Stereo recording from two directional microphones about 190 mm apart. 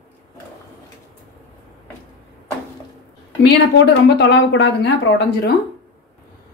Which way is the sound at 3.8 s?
65° left (ahead or behind).